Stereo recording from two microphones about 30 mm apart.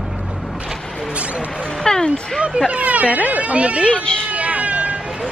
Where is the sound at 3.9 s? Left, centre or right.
Left.